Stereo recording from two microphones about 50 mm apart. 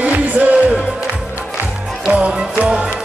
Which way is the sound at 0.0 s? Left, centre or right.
Right.